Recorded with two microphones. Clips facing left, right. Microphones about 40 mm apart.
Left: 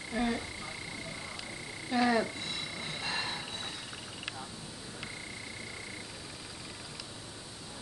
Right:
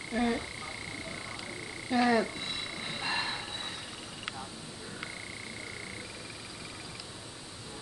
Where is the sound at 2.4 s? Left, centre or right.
Centre.